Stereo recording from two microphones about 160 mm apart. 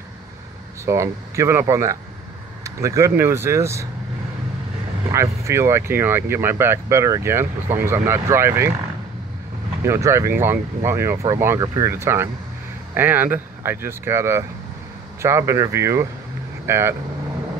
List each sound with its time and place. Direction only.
0.8 s speech: 20° right (ahead or behind)
5.1 s speech: 15° right (ahead or behind)
9.8 s speech: 15° right (ahead or behind)